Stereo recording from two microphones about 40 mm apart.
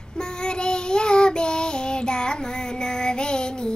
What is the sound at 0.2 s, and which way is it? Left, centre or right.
Child singing, centre.